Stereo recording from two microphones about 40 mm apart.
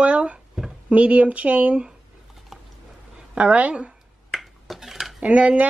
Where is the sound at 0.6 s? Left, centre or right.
Centre.